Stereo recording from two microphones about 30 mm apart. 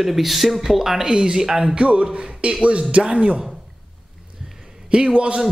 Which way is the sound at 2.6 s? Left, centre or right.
Right.